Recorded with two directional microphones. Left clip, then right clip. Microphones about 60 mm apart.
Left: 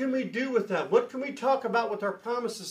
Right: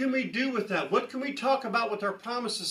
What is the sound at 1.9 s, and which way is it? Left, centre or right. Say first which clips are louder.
Speech: left 1 dB; left.